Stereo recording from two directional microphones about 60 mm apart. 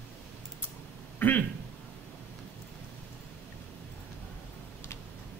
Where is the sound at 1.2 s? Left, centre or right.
Left.